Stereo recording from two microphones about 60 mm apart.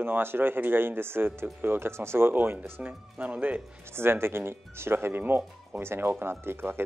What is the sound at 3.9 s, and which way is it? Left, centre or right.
Speech, right.